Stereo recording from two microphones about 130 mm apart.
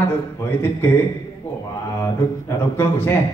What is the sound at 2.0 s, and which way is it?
Speech, 20° left (ahead or behind).